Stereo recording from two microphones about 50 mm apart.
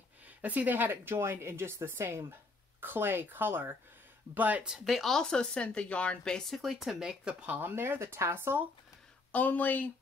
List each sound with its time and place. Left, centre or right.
0.4 s speech: right
4.6 s speech: centre
5.0 s speech: centre
6.5 s speech: centre
7.0 s speech: centre
7.4 s speech: right
7.7 s speech: right
9.3 s speech: left